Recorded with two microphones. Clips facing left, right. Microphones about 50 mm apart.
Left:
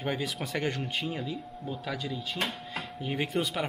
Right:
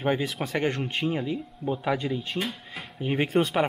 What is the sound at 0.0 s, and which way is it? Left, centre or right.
Speech, right.